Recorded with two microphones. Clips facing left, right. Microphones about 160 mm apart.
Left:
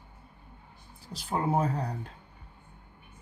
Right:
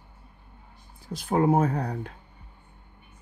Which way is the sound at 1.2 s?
50° right (ahead or behind).